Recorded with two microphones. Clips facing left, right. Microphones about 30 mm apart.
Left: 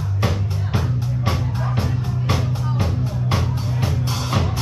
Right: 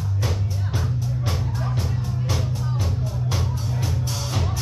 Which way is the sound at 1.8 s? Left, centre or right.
Left.